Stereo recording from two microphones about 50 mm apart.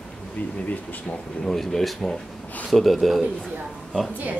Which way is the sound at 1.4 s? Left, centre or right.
Centre.